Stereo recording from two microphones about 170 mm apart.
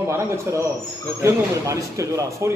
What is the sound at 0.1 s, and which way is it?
A man's voice, 15° right (ahead or behind).